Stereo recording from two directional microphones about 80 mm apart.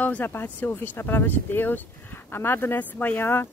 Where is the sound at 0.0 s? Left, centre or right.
Left.